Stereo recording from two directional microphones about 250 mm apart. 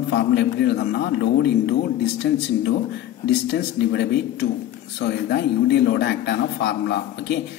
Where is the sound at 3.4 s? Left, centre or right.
Left.